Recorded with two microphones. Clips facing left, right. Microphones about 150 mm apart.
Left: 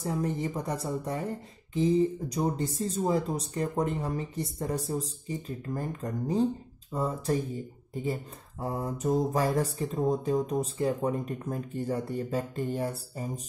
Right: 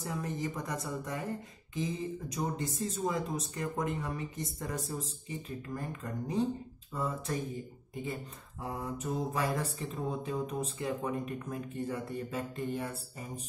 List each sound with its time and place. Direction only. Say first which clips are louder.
0.0 s speech: left 6 dB; 35° left (ahead or behind)